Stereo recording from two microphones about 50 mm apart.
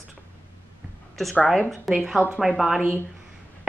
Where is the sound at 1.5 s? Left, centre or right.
Centre.